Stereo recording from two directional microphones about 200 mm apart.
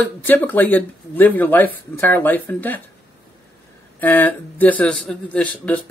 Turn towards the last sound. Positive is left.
turn(degrees=5)  # may be behind; listen again after turning